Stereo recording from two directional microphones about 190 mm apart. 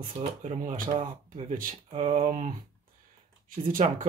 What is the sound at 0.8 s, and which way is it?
Speech, 25° right (ahead or behind).